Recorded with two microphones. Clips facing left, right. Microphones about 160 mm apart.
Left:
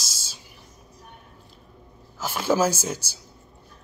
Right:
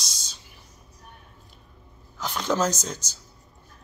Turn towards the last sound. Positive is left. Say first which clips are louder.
# left 3 dB
turn(degrees=10)  # may be behind; listen again after turning